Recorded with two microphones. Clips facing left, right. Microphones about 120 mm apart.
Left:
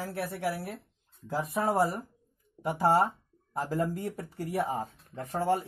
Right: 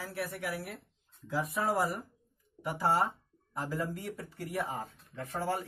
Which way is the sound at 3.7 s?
40° left (ahead or behind).